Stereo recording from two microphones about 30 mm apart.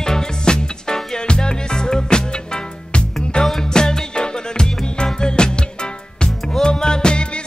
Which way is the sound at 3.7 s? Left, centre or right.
Left.